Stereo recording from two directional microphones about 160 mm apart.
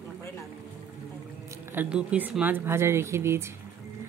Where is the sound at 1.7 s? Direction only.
10° right (ahead or behind).